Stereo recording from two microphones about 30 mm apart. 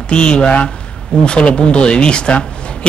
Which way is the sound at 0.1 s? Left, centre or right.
Left.